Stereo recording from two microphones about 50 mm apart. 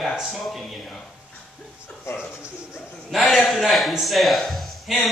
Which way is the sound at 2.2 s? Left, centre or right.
Centre.